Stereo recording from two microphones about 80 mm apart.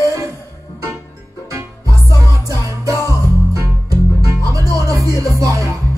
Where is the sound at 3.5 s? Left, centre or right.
Right.